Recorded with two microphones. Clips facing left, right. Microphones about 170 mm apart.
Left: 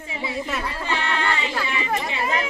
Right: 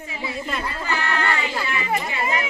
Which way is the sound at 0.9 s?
20° left (ahead or behind).